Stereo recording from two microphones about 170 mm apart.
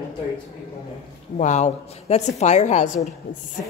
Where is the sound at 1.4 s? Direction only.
45° left (ahead or behind).